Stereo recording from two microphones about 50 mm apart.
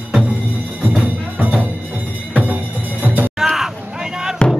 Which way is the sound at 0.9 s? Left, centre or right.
Right.